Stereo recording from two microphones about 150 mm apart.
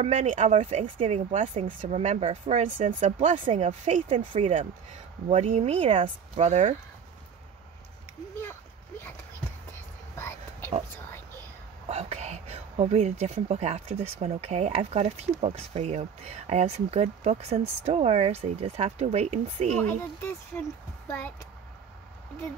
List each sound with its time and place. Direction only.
0.0 s speech: 50° right (ahead or behind)
10.1 s a sound: 15° left (ahead or behind)
11.9 s speech: 45° right (ahead or behind)
19.8 s speech: 15° left (ahead or behind)